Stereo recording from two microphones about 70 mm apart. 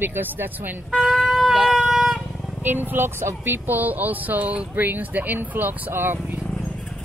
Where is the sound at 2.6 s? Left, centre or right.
Right.